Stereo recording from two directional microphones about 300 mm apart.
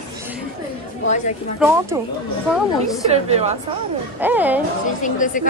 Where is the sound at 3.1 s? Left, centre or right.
Right.